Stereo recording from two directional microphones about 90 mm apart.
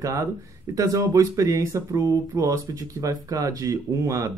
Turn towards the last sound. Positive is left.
turn(degrees=-40)  # may be behind; listen again after turning